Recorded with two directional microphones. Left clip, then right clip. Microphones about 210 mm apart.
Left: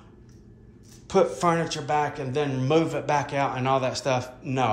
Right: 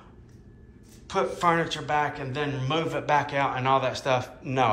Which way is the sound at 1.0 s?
30° left (ahead or behind).